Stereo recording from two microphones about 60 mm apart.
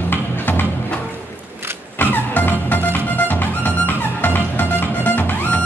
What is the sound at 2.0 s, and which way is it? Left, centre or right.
Music, left.